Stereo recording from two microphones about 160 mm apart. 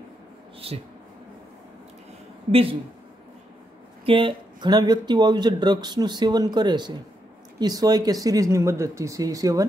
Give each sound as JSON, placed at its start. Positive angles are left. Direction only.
{"t": 4.0, "sound": "speech", "side_deg": -35}